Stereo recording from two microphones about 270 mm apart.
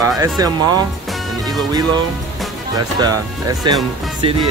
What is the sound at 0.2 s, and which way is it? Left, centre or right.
Speech, centre.